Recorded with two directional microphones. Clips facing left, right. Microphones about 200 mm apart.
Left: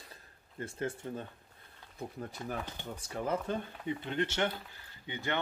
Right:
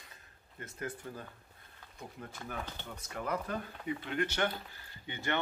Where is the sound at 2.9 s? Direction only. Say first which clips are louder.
Left 3 dB; 30° left (ahead or behind).